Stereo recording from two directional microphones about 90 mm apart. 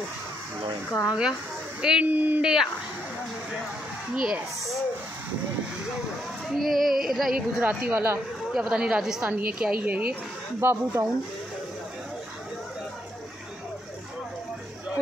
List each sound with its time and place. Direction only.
1.0 s a woman's voice: 10° right (ahead or behind)
2.4 s a woman's voice: 5° right (ahead or behind)
4.1 s a woman's voice: 10° right (ahead or behind)
6.5 s speech: centre (ahead or behind)
7.9 s speech: 30° right (ahead or behind)
8.5 s a woman's voice: 5° right (ahead or behind); by 11.1 s 25° right (ahead or behind)